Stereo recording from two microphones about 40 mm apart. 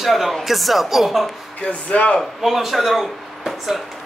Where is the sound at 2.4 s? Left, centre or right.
Centre.